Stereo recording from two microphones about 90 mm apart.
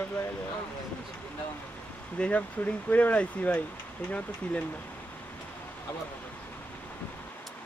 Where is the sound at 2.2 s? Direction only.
15° left (ahead or behind).